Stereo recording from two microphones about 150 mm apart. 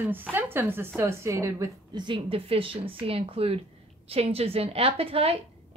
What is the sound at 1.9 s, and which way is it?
A woman's voice, 35° right (ahead or behind).